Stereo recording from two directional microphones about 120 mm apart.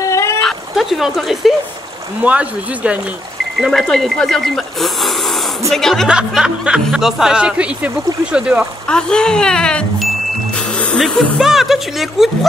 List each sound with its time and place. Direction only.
0.0 s a sound: 25° left (ahead or behind)
0.4 s a sound: centre (ahead or behind)
2.2 s speech: 10° right (ahead or behind)
3.5 s speech: centre (ahead or behind)
6.0 s speech: 5° right (ahead or behind)
8.8 s speech: 5° left (ahead or behind)